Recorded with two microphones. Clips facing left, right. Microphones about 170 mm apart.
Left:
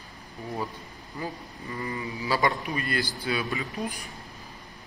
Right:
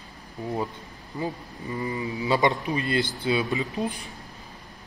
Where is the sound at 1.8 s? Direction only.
20° right (ahead or behind).